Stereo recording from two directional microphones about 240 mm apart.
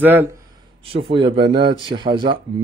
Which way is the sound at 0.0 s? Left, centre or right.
Centre.